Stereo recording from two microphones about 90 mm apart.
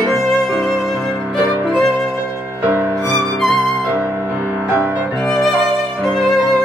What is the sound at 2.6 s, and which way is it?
Music, 20° right (ahead or behind).